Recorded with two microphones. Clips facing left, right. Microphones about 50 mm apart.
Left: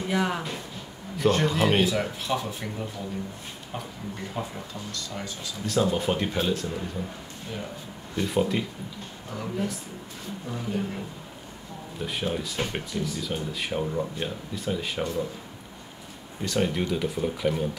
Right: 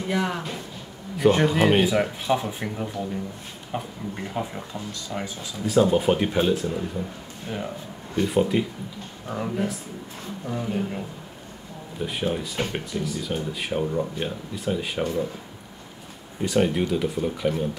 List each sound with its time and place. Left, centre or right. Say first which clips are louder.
0.0 s speech: right 1 dB; centre
1.1 s speech: right 4 dB; centre
8.2 s speech: right 4 dB; centre
9.3 s speech: right 4 dB; right; by 15.0 s centre
16.4 s speech: right 4 dB; centre